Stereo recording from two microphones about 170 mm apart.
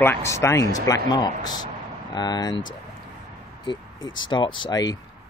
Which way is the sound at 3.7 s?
25° left (ahead or behind).